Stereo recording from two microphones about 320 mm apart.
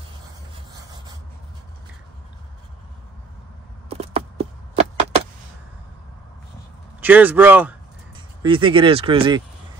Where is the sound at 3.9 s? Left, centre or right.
Centre.